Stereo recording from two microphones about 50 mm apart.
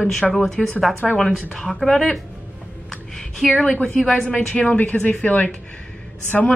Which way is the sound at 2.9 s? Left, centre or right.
Centre.